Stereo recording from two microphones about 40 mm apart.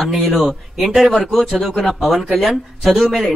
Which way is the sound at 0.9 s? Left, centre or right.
Centre.